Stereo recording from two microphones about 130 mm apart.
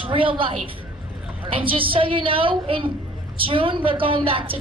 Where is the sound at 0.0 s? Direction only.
40° right (ahead or behind).